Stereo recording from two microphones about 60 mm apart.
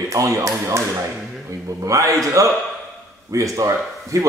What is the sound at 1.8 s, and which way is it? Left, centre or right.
Speech, right.